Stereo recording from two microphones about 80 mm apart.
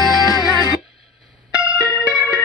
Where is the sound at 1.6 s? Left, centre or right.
Left.